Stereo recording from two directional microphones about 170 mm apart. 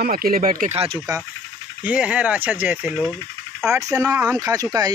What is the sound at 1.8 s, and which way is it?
Speech, 10° right (ahead or behind).